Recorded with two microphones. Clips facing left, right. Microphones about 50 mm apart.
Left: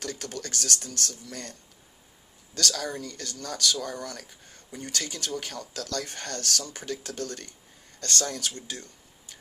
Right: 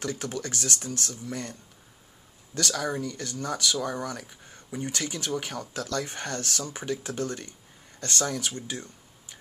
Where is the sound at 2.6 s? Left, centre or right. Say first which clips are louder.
Right 2 dB; centre.